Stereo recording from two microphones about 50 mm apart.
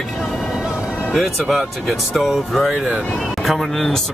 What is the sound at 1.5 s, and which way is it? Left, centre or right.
Speech, centre.